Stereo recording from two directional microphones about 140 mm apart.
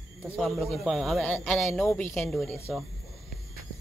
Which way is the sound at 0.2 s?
Centre (ahead or behind).